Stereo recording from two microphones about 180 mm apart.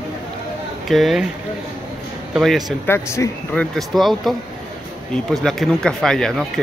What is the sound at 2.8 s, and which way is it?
Speech, 15° left (ahead or behind).